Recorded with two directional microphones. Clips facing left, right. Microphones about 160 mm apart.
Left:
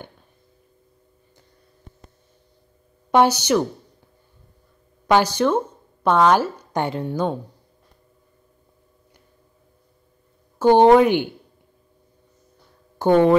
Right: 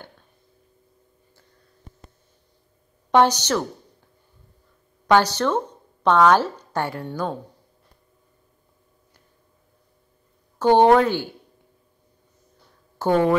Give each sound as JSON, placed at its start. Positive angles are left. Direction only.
{"t": 3.1, "sound": "speech", "side_deg": 10}
{"t": 5.0, "sound": "a woman's voice", "side_deg": 10}
{"t": 10.6, "sound": "speech", "side_deg": 15}
{"t": 13.0, "sound": "speech", "side_deg": 20}